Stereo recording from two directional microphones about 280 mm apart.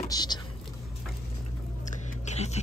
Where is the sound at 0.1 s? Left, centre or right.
Centre.